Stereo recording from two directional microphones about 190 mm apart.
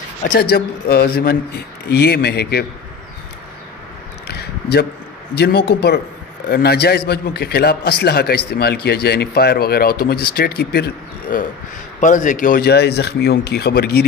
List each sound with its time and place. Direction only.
0.2 s a man's voice: 50° left (ahead or behind)
4.3 s a sound: 60° left (ahead or behind)
5.3 s a man's voice: 60° left (ahead or behind)
12.0 s a man's voice: 40° left (ahead or behind); by 14.0 s 60° left (ahead or behind)